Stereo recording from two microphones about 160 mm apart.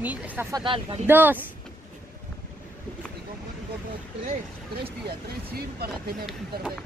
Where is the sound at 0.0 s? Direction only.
10° right (ahead or behind).